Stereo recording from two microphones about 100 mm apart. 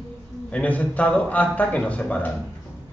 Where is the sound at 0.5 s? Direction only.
15° left (ahead or behind).